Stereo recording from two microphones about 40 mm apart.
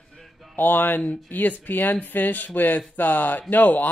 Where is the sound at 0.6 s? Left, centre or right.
Left.